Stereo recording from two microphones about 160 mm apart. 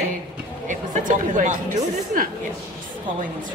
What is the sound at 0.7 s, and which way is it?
Speech, 55° right (ahead or behind).